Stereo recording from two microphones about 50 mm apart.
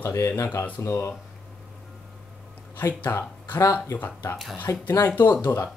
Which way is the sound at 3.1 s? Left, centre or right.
Left.